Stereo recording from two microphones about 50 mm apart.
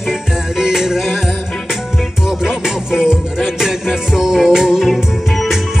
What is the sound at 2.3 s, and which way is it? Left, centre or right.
Music, centre.